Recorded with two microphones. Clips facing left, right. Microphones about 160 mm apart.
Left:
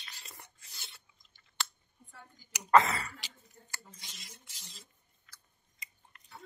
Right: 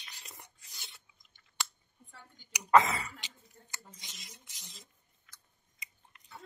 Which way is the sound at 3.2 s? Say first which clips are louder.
Even; 20° right (ahead or behind).